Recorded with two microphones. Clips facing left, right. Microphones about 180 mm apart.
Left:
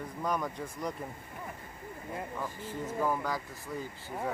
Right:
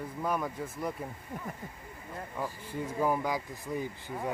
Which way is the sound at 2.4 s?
15° right (ahead or behind).